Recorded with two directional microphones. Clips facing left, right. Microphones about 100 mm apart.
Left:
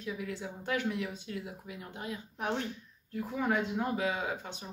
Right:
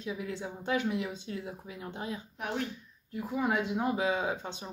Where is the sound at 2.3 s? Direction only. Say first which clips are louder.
Left 3 dB; 30° left (ahead or behind).